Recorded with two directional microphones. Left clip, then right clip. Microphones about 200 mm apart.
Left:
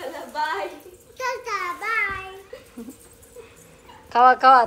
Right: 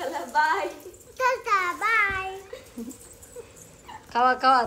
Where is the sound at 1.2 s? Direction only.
20° right (ahead or behind).